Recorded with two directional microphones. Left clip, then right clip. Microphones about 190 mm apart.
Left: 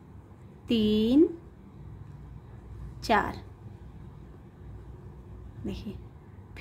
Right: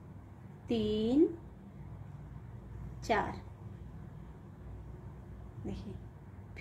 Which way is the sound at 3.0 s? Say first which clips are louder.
Left 7 dB; 25° left (ahead or behind).